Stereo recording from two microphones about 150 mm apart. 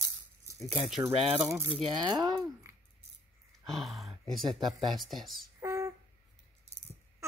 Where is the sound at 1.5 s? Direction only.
30° right (ahead or behind).